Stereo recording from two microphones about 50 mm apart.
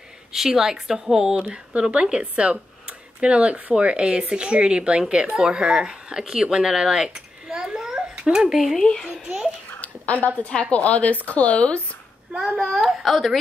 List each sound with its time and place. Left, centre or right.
0.3 s speech: centre
1.5 s speech: right
8.7 s a child's voice: centre
9.8 s a sound: left
10.5 s speech: left
12.8 s a woman's voice: centre